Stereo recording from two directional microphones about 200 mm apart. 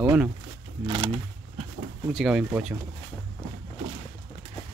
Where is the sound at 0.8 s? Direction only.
25° right (ahead or behind).